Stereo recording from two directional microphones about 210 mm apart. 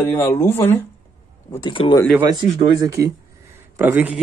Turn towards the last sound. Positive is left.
turn(degrees=-10)  # may be behind; listen again after turning